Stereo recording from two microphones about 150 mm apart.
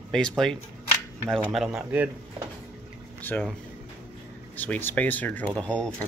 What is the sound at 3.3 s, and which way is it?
Speech, 15° left (ahead or behind).